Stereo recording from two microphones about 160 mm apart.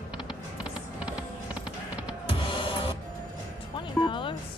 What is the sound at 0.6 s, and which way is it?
Music, 5° right (ahead or behind).